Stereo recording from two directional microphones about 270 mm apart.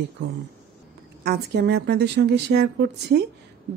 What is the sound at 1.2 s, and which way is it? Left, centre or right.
A woman's voice, right.